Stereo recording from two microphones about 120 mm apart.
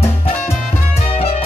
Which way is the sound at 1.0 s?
55° left (ahead or behind).